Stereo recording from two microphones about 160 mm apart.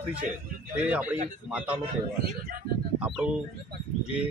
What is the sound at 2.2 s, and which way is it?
Speech, 70° right (ahead or behind).